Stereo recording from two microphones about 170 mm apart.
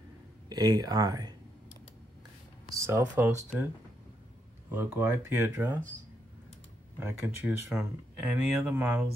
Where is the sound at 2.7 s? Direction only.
20° right (ahead or behind).